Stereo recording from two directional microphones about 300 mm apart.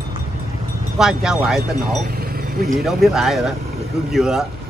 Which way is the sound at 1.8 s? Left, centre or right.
Right.